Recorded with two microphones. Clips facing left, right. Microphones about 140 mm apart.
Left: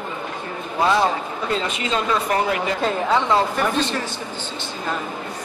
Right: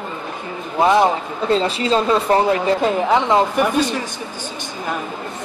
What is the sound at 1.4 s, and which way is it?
Speech, 30° right (ahead or behind).